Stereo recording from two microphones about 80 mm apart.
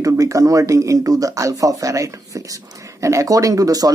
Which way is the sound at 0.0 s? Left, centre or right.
Right.